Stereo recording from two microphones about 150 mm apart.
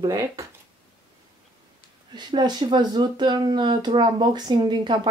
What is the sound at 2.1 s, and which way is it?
Speech, 30° right (ahead or behind).